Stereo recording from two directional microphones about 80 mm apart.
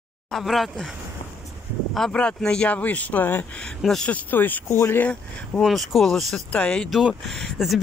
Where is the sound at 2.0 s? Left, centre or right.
Centre.